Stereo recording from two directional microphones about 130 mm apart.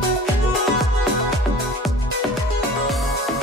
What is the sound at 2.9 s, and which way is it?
Music, centre (ahead or behind).